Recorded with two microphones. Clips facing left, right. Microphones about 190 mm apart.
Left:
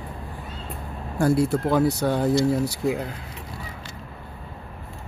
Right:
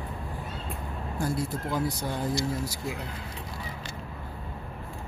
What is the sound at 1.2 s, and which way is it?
Speech, 70° left (ahead or behind).